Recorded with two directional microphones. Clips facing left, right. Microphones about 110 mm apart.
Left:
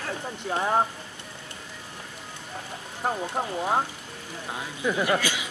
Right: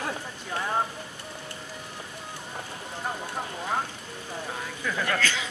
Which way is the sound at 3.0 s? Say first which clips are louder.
Left 6 dB; 45° left (ahead or behind).